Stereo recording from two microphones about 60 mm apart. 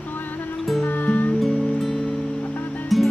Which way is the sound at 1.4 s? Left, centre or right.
Centre.